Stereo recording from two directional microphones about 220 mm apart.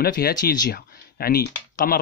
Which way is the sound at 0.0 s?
45° left (ahead or behind).